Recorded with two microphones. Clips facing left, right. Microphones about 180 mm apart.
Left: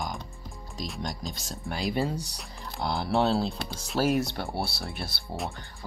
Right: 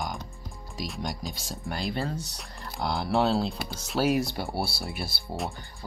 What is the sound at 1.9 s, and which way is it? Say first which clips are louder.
Speech: left 5 dB; 15° left (ahead or behind).